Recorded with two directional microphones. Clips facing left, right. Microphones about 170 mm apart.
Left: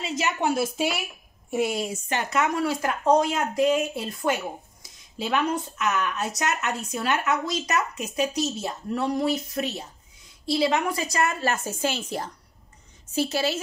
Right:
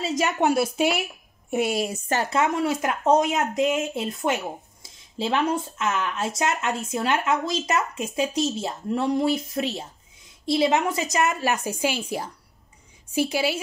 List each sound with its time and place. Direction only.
0.4 s a woman's voice: 65° right (ahead or behind)
2.0 s speech: 40° right (ahead or behind)
2.3 s a woman's voice: 25° right (ahead or behind)